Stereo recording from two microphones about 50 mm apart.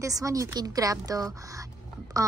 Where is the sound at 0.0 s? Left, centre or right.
Right.